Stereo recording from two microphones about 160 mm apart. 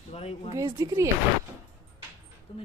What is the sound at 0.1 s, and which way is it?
Speech, 40° left (ahead or behind).